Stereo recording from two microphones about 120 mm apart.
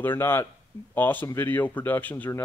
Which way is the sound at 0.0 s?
20° left (ahead or behind).